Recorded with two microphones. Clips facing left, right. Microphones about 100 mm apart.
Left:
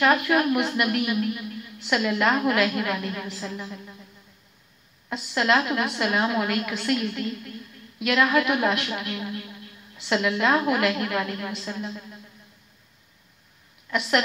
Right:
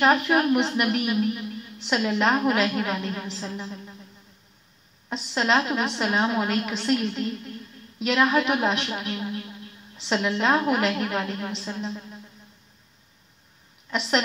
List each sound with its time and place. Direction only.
0.0 s a woman's voice: 25° right (ahead or behind)
5.1 s a woman's voice: 30° right (ahead or behind)